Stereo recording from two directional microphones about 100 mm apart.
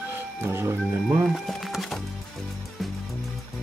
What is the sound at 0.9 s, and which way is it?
Speech, 15° right (ahead or behind).